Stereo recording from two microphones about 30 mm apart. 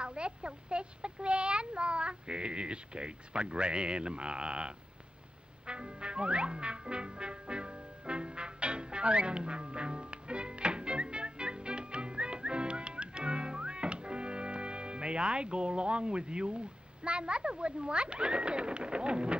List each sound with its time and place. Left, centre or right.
0.0 s a child's voice: right
5.7 s music: right